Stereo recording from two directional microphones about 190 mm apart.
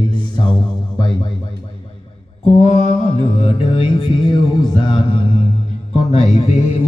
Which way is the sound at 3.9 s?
25° left (ahead or behind).